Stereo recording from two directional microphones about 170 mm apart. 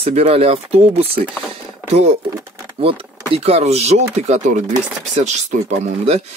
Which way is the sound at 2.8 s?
35° right (ahead or behind).